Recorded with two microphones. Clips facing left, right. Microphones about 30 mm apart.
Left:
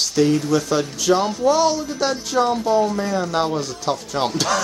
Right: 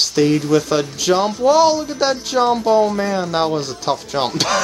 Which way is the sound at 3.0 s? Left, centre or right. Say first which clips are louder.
Right 2 dB; right.